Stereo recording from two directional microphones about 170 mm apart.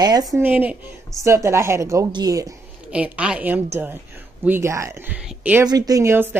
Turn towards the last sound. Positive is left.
turn(degrees=-15)  # may be behind; listen again after turning